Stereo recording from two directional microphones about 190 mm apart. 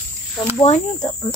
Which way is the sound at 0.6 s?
35° left (ahead or behind).